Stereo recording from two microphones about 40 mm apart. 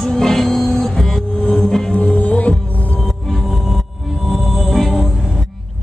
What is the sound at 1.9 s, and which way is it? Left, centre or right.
Music, left.